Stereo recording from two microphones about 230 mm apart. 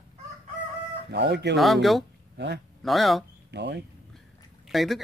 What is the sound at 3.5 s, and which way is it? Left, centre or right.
Speech, right.